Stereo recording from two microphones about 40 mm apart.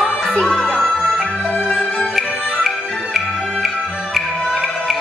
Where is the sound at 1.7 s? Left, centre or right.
Left.